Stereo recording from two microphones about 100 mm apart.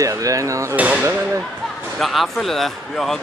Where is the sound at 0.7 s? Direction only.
15° right (ahead or behind).